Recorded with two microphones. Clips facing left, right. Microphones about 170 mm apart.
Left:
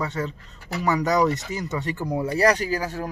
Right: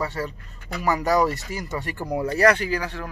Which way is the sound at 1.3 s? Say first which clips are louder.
Left 2 dB; 20° left (ahead or behind).